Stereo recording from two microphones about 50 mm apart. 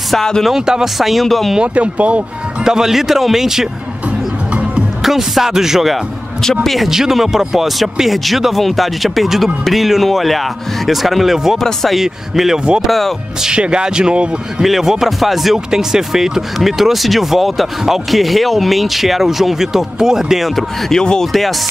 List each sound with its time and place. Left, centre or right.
0.1 s speech: centre
0.5 s speech: centre
1.6 s speech: right
2.6 s speech: centre
5.0 s speech: centre
6.4 s speech: centre
6.9 s speech: centre
12.0 s speech: centre
13.4 s speech: centre
14.6 s speech: centre
20.9 s speech: centre
21.3 s speech: centre